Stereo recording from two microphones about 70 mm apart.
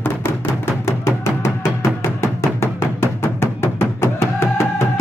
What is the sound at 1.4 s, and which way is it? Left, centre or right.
Music, left.